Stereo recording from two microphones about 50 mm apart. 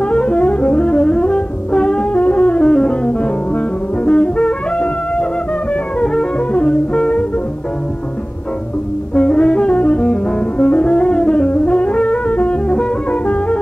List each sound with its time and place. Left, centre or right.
0.0 s music: left
9.1 s music: left
10.6 s brass instrument: left